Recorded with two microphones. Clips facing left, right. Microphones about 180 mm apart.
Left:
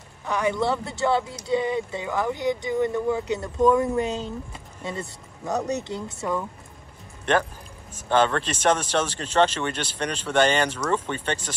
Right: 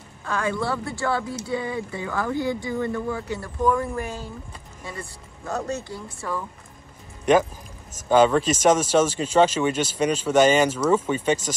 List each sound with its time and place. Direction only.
0.2 s speech: 20° left (ahead or behind)
8.1 s speech: 10° right (ahead or behind)